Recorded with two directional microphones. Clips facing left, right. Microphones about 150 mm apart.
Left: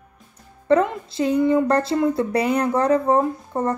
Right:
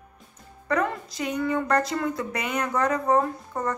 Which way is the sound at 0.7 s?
30° left (ahead or behind).